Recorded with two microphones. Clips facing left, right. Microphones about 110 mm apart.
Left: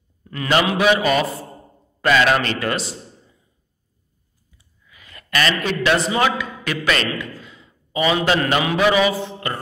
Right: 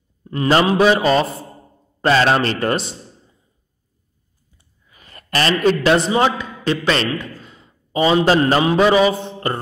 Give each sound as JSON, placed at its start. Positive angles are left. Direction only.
{"t": 0.2, "sound": "a man's voice", "side_deg": -30}
{"t": 4.8, "sound": "a sound", "side_deg": -40}
{"t": 5.9, "sound": "a man's voice", "side_deg": -30}
{"t": 7.2, "sound": "a man's voice", "side_deg": -45}